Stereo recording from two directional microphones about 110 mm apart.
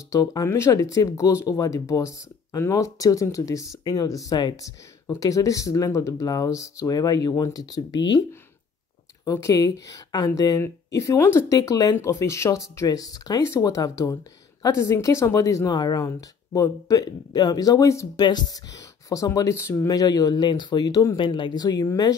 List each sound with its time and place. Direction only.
0.1 s speech: 35° left (ahead or behind)
18.2 s speech: 40° left (ahead or behind)
21.2 s speech: 45° left (ahead or behind)